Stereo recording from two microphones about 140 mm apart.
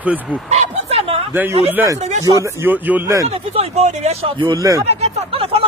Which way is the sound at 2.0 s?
55° right (ahead or behind).